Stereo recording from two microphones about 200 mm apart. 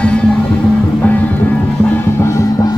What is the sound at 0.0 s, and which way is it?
Music, 5° left (ahead or behind).